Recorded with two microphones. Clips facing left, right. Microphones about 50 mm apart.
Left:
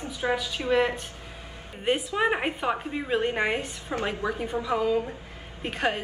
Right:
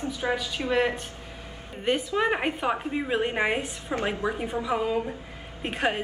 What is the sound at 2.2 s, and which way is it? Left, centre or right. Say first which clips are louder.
A woman's voice: even; centre.